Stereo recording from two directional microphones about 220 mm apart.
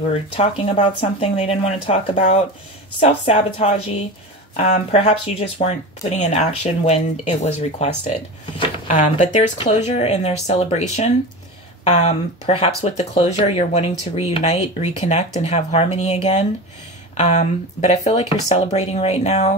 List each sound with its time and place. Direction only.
0.1 s speech: 25° left (ahead or behind)